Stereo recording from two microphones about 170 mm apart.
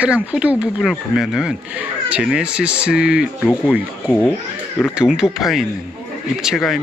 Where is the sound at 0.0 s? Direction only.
5° right (ahead or behind).